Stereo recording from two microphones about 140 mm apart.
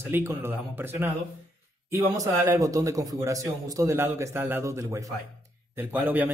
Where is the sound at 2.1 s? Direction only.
25° right (ahead or behind).